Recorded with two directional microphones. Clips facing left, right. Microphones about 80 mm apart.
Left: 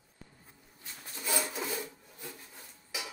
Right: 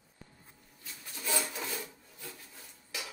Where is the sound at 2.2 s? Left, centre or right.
Centre.